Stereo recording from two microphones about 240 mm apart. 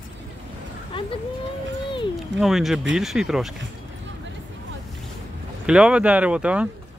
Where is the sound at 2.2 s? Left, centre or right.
Centre.